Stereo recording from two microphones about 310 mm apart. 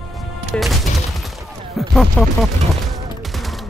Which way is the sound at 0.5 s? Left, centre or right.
Centre.